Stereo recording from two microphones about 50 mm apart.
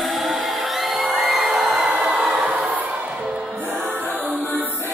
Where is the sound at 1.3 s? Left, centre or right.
Centre.